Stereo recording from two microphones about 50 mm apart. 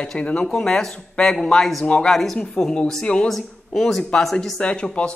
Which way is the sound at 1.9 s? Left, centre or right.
Centre.